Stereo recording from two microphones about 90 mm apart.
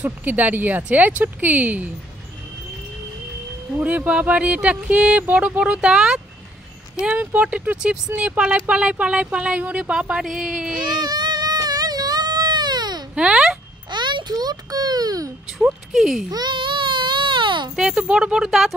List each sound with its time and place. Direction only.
0.0 s speech: 20° right (ahead or behind)
3.8 s speech: 15° right (ahead or behind)
10.8 s baby cry: 55° right (ahead or behind)
13.1 s speech: 10° right (ahead or behind)
13.8 s a child's voice: 55° right (ahead or behind); by 15.3 s 40° right (ahead or behind)
15.6 s speech: 5° right (ahead or behind)
16.3 s baby cry: 50° right (ahead or behind)
17.7 s speech: 10° right (ahead or behind)